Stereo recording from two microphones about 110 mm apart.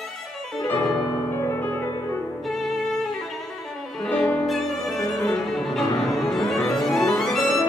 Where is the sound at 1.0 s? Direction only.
25° left (ahead or behind).